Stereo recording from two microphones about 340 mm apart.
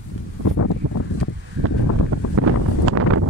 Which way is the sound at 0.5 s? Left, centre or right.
Left.